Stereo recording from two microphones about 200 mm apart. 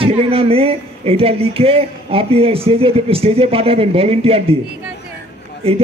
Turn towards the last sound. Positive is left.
turn(degrees=-30)  # may be behind; listen again after turning